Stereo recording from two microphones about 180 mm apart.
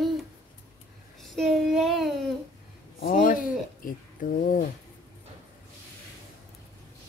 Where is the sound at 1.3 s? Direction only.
Centre (ahead or behind).